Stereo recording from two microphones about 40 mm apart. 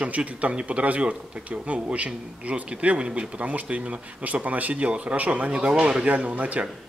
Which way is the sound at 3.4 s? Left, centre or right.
Right.